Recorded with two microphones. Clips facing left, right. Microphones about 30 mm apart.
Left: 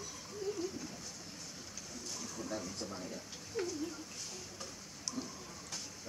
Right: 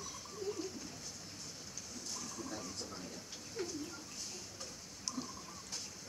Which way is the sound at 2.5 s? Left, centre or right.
Centre.